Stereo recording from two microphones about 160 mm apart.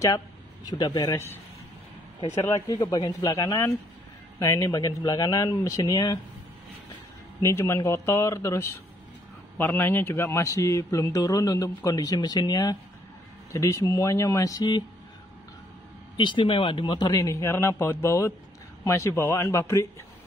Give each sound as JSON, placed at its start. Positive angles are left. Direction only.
{"t": 0.7, "sound": "a man's voice", "side_deg": 25}
{"t": 2.4, "sound": "a man's voice", "side_deg": 20}
{"t": 7.4, "sound": "a man's voice", "side_deg": 15}
{"t": 16.2, "sound": "a man's voice", "side_deg": 30}